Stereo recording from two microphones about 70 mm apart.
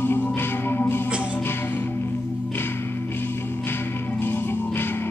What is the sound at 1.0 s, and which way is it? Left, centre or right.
Music, centre.